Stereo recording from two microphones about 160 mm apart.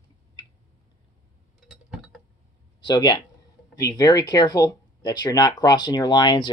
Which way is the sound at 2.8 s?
25° left (ahead or behind).